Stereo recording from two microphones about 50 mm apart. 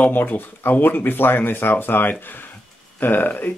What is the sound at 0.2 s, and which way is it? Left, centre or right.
Speech, left.